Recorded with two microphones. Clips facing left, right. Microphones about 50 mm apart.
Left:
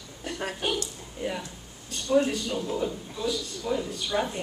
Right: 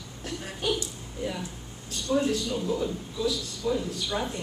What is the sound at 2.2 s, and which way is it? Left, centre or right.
A woman's voice, centre.